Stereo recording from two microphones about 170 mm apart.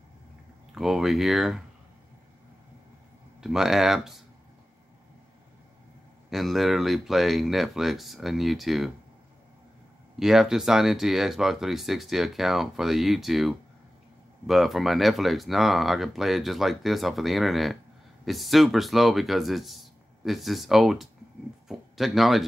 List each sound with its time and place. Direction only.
0.7 s speech: centre (ahead or behind)
3.3 s speech: 5° right (ahead or behind)
6.3 s speech: centre (ahead or behind)
10.1 s speech: centre (ahead or behind)